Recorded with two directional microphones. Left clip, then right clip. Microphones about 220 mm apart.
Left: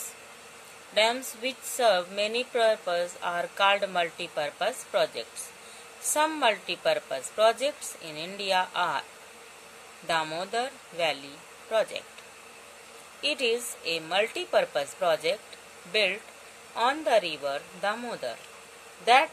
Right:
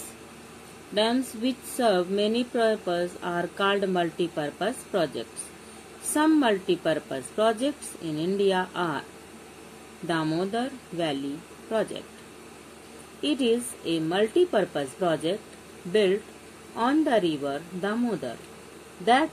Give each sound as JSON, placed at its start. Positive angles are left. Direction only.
{"t": 1.3, "sound": "speech", "side_deg": 25}
{"t": 10.0, "sound": "speech", "side_deg": 25}
{"t": 13.2, "sound": "speech", "side_deg": 25}